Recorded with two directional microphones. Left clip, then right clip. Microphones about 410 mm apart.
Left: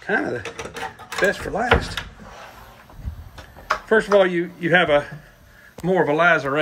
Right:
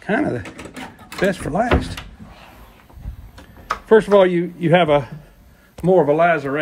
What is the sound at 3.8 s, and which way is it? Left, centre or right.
A man's voice, centre.